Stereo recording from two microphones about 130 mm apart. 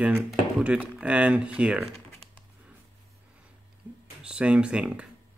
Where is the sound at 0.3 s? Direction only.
5° right (ahead or behind).